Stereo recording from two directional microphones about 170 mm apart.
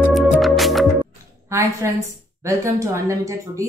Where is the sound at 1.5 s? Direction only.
15° right (ahead or behind).